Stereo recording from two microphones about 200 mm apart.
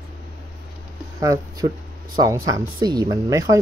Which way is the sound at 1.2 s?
20° right (ahead or behind).